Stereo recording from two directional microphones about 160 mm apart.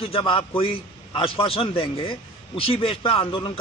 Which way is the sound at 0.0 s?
35° left (ahead or behind).